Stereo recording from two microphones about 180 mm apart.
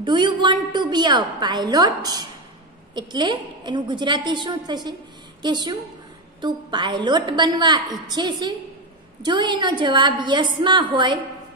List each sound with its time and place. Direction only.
0.0 s a woman's voice: 25° right (ahead or behind)